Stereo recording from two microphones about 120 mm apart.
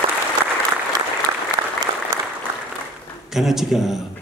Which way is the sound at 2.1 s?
35° right (ahead or behind).